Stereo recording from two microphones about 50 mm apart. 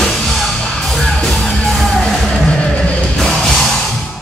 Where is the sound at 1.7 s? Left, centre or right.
Centre.